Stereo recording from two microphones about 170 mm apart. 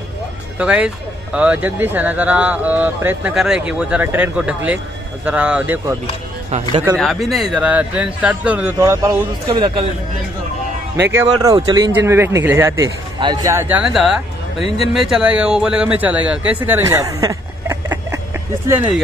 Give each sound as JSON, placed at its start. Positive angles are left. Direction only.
{"t": 0.6, "sound": "speech", "side_deg": -5}
{"t": 7.0, "sound": "a man's voice", "side_deg": 0}
{"t": 9.5, "sound": "a man's voice", "side_deg": -30}
{"t": 11.0, "sound": "speech", "side_deg": -15}
{"t": 11.3, "sound": "speech", "side_deg": -25}